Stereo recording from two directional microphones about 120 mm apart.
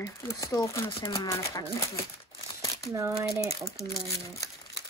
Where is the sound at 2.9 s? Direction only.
25° right (ahead or behind).